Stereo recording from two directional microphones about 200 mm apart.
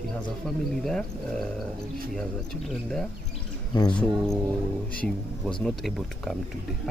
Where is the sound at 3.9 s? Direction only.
Centre (ahead or behind).